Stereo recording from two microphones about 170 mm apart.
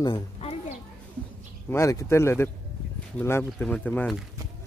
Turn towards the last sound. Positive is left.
turn(degrees=10)  # may be behind; listen again after turning